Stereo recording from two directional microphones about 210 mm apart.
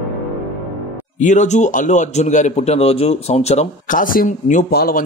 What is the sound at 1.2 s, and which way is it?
A man's voice, 35° left (ahead or behind).